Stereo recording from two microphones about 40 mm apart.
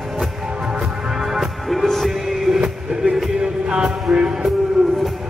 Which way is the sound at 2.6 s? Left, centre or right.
Centre.